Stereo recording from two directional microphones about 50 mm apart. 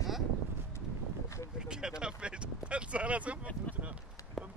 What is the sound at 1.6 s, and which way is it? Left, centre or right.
Vehicle, centre.